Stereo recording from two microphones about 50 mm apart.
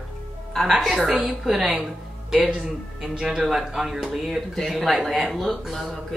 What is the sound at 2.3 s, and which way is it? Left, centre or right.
Speech, centre.